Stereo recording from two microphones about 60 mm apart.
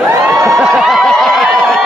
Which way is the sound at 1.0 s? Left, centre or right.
Centre.